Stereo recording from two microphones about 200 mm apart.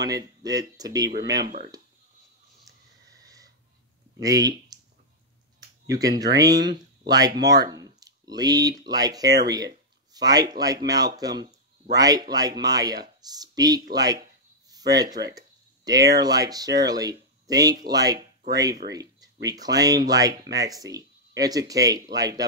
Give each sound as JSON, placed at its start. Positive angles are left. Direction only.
{"t": 0.0, "sound": "speech", "side_deg": -20}
{"t": 1.4, "sound": "speech", "side_deg": -50}
{"t": 4.2, "sound": "speech", "side_deg": -20}
{"t": 5.9, "sound": "speech", "side_deg": -20}
{"t": 18.8, "sound": "speech", "side_deg": -40}
{"t": 19.4, "sound": "speech", "side_deg": -20}